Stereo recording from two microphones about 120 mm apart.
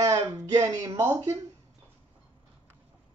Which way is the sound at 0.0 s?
30° right (ahead or behind).